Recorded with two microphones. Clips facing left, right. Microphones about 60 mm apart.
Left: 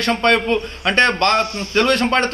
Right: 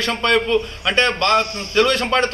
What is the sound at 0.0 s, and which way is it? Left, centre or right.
Speech, left.